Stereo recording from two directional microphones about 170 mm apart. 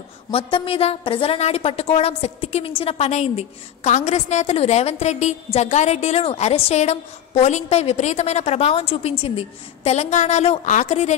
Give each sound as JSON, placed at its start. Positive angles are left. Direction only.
{"t": 0.3, "sound": "a woman's voice", "side_deg": 35}